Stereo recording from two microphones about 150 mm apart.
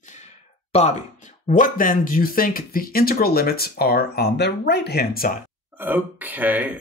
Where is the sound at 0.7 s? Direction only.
40° left (ahead or behind).